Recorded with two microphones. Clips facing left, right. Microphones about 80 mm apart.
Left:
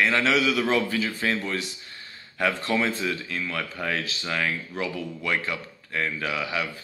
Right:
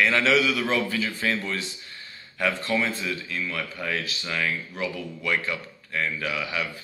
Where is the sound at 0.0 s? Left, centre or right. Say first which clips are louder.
Right 1 dB; left.